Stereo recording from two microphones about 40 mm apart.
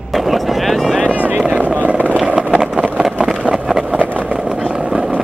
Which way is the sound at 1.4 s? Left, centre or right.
Right.